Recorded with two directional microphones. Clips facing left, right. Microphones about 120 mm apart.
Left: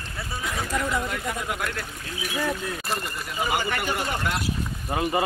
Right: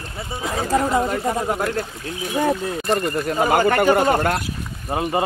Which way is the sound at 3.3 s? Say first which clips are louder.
Right 9 dB; 50° right (ahead or behind).